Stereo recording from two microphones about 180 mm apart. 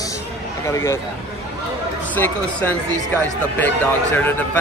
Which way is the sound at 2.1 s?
10° left (ahead or behind).